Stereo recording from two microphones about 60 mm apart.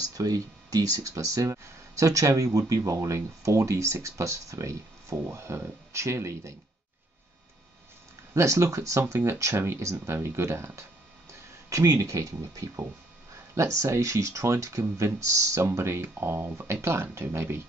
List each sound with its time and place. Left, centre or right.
0.0 s speech: right
1.1 s speech: right
8.4 s speech: right
11.7 s speech: right
13.6 s speech: right